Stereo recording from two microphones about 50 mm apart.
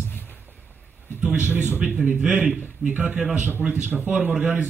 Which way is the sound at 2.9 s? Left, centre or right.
Right.